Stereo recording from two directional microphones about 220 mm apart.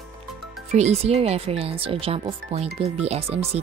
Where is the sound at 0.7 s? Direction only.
30° right (ahead or behind).